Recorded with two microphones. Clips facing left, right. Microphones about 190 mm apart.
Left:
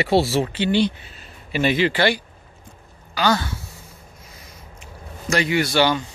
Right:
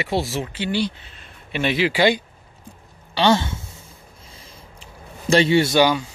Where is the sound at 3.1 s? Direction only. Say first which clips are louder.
Right 3 dB; 25° right (ahead or behind).